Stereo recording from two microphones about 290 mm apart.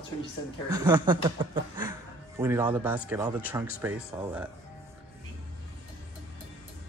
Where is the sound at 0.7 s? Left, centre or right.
Centre.